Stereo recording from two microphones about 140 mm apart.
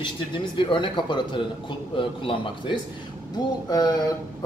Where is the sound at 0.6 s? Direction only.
35° left (ahead or behind).